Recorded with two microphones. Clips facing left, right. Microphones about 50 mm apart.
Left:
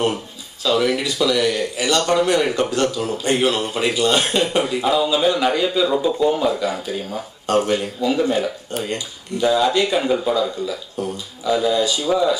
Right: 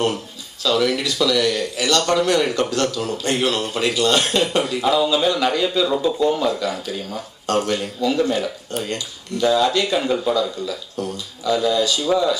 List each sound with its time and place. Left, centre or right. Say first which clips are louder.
0.7 s speech: left 1 dB; centre